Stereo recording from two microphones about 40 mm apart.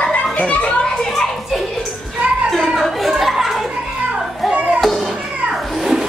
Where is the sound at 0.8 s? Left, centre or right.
Centre.